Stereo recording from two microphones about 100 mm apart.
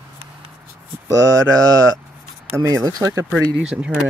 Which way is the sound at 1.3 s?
35° right (ahead or behind).